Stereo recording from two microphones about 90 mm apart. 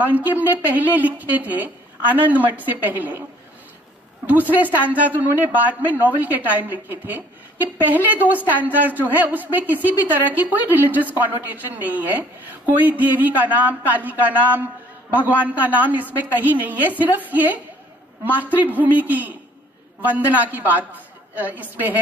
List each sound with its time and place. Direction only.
0.0 s a woman's voice: 20° right (ahead or behind)
4.8 s a woman's voice: 15° right (ahead or behind)